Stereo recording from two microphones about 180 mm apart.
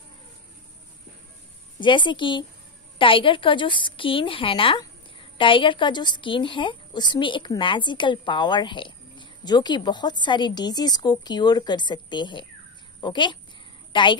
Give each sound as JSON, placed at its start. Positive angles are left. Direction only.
{"t": 1.8, "sound": "a woman's voice", "side_deg": 25}